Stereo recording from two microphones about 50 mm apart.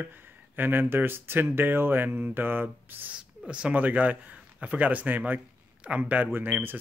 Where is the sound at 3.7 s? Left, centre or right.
Right.